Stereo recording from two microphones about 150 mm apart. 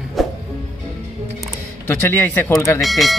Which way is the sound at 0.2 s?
Centre (ahead or behind).